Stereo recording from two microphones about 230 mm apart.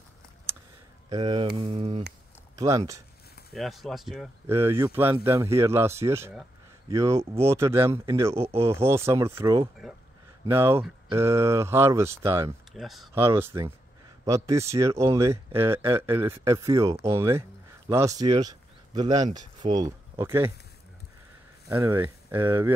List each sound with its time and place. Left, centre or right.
1.1 s speech: centre
2.5 s speech: centre
3.5 s speech: centre
4.5 s speech: centre
9.8 s speech: centre
12.7 s speech: centre
21.6 s speech: centre